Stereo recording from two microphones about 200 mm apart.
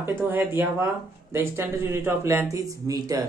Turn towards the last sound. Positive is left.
turn(degrees=-15)  # may be behind; listen again after turning